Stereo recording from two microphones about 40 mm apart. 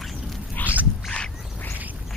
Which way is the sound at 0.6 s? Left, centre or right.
Left.